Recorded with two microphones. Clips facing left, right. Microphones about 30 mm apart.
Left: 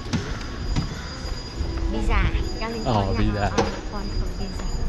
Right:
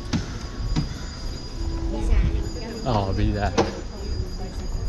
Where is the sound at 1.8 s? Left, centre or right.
Left.